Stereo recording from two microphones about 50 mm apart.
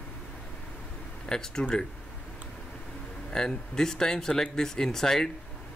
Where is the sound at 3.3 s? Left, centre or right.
Centre.